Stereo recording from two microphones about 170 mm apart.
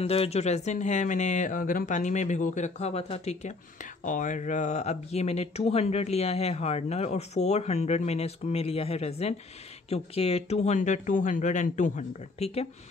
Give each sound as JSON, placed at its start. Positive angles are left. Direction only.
{"t": 0.0, "sound": "speech", "side_deg": 35}
{"t": 4.0, "sound": "speech", "side_deg": 50}